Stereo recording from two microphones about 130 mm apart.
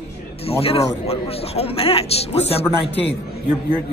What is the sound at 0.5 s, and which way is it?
A man's voice, 50° left (ahead or behind).